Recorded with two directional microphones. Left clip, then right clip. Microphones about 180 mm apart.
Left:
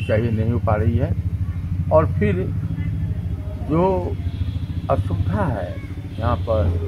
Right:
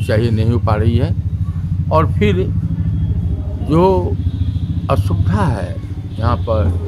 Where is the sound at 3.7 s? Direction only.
30° right (ahead or behind).